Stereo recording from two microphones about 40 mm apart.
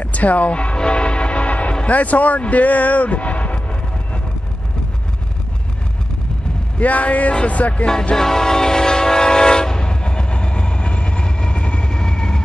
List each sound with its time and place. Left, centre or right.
0.0 s music: left
1.9 s speech: left
6.8 s speech: left
8.2 s train: centre; by 11.9 s left
11.9 s vehicle: centre